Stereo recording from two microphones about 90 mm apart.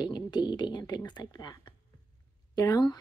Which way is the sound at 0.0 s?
55° left (ahead or behind).